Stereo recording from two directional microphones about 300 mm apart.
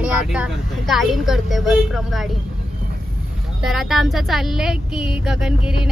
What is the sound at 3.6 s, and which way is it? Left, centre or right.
A woman's voice, centre.